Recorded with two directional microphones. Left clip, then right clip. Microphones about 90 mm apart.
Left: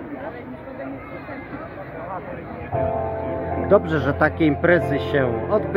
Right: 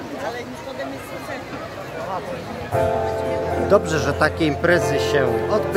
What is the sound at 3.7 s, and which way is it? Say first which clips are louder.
A man's voice: left 1 dB; 20° left (ahead or behind).